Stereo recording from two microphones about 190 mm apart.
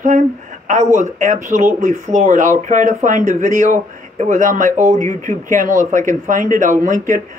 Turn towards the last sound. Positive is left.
turn(degrees=-40)  # may be behind; listen again after turning